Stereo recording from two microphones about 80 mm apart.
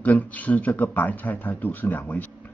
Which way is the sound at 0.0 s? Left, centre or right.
Centre.